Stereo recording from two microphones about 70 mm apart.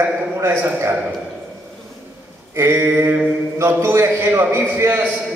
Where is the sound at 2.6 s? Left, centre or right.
Right.